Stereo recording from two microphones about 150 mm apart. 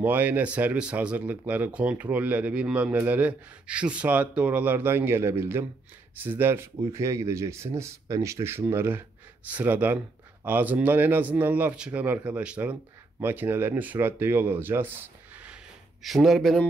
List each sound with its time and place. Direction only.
0.0 s a man's voice: 10° right (ahead or behind)
16.0 s speech: centre (ahead or behind)